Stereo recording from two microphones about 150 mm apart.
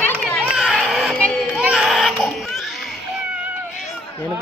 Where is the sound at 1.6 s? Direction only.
5° right (ahead or behind).